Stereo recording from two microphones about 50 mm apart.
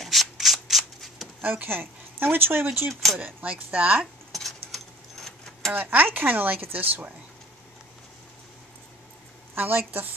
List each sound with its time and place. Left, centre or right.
0.0 s shuffling cards: centre
1.4 s speech: right
2.9 s speech: centre
3.2 s speech: right
4.3 s keys jangling: centre
5.7 s speech: right
9.6 s speech: right